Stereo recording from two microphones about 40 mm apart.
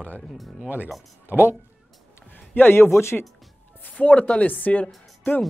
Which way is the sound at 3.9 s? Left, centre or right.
Left.